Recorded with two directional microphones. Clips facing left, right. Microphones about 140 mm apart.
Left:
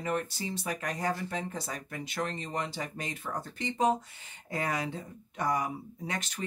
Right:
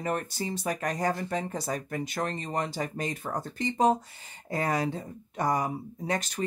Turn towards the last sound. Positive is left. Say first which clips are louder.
# right 6 dB
turn(degrees=-40)  # may be behind; listen again after turning